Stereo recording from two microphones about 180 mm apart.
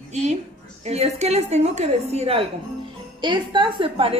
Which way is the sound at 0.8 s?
35° right (ahead or behind).